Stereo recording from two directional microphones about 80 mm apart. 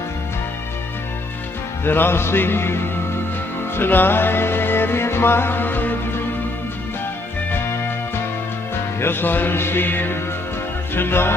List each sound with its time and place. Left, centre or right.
1.9 s music: left
9.0 s music: left